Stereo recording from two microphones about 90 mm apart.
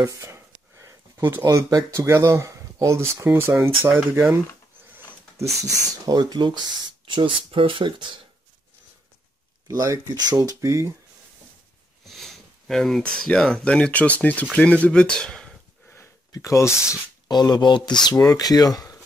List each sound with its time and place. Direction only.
0.0 s a sound: 35° right (ahead or behind)
1.4 s speech: 45° right (ahead or behind); by 4.4 s 25° right (ahead or behind)
4.9 s speech: 35° right (ahead or behind); by 6.6 s 55° right (ahead or behind)
7.1 s speech: 70° right (ahead or behind)
9.7 s speech: 40° right (ahead or behind)
12.1 s speech: centre (ahead or behind)
16.3 s speech: 35° left (ahead or behind)
17.3 s speech: 50° left (ahead or behind)